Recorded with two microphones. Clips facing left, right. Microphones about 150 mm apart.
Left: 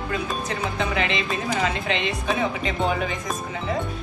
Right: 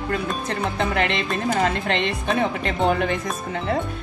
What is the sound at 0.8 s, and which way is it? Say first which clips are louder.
A woman's voice: right 2 dB; 55° right (ahead or behind).